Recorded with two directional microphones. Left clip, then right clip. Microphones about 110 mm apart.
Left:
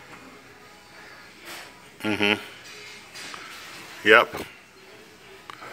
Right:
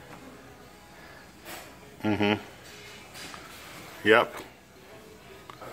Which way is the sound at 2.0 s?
30° right (ahead or behind).